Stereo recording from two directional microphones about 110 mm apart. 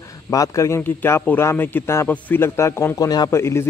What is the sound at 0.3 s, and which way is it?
A man's voice, 30° left (ahead or behind).